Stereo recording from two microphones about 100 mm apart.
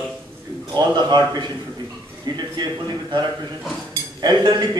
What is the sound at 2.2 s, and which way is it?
A man's voice, 45° right (ahead or behind).